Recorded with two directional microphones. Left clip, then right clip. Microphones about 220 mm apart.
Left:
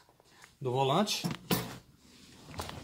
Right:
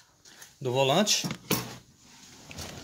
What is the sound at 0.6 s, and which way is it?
Speech, 20° right (ahead or behind).